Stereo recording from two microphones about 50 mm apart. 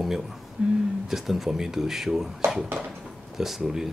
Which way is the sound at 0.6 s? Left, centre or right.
Centre.